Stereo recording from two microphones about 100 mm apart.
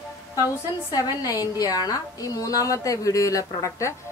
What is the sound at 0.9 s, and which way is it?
A woman's voice, 35° left (ahead or behind).